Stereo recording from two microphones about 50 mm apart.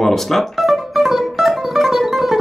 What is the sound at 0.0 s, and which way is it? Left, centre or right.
Music, centre.